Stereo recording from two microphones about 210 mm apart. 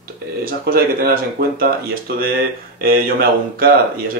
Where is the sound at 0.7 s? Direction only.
45° right (ahead or behind).